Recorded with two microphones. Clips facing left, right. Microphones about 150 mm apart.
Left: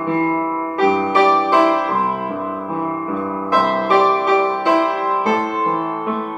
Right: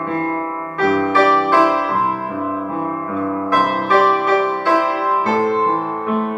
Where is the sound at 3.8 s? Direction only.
20° left (ahead or behind).